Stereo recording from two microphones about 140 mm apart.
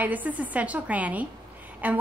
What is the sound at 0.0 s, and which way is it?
A woman's voice, 10° right (ahead or behind).